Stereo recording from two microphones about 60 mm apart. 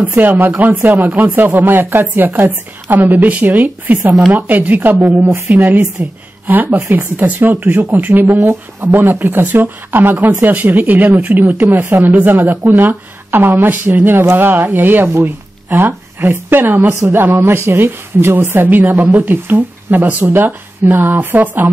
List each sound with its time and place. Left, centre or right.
0.1 s a woman's voice: right
5.0 s a woman's voice: right
6.4 s a woman's voice: right
15.2 s a woman's voice: right